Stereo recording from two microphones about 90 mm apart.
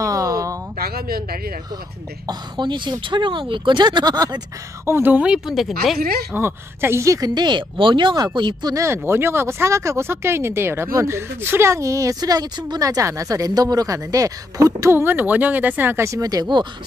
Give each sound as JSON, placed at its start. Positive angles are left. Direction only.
{"t": 0.0, "sound": "a sound", "side_deg": -40}
{"t": 2.2, "sound": "speech", "side_deg": -55}
{"t": 4.8, "sound": "speech", "side_deg": -25}
{"t": 5.5, "sound": "speech", "side_deg": 0}
{"t": 6.3, "sound": "speech", "side_deg": -25}
{"t": 8.7, "sound": "speech", "side_deg": -30}